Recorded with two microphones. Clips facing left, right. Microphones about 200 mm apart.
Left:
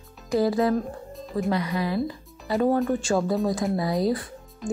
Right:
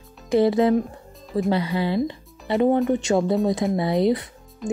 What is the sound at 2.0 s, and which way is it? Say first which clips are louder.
Music: right 3 dB; 25° right (ahead or behind).